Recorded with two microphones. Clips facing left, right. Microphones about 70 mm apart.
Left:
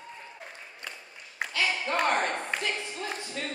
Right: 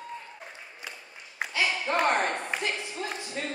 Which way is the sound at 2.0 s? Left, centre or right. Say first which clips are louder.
Right 1 dB; right.